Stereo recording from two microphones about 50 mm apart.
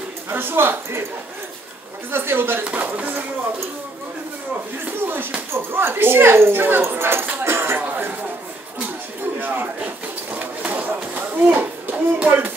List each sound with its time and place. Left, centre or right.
0.3 s speech: right
2.0 s speech: right
2.6 s speech: right
5.0 s speech: right
10.3 s a sound: right